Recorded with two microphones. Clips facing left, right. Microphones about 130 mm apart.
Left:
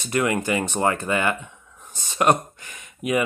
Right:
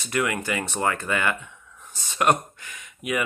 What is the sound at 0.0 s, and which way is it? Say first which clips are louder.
Speech: left 3 dB; 30° left (ahead or behind).